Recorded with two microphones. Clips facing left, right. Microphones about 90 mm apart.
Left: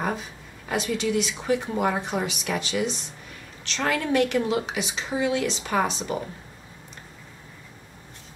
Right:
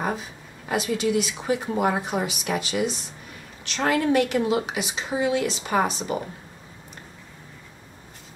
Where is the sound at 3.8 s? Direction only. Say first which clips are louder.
Right 4 dB; 20° right (ahead or behind).